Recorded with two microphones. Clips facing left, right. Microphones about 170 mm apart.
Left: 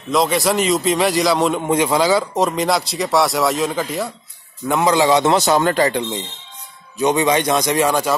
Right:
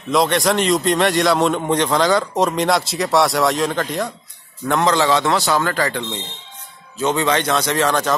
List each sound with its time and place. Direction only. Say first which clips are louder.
0.1 s a man's voice: even; centre (ahead or behind)